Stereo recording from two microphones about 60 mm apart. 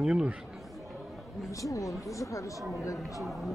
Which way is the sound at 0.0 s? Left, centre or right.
Centre.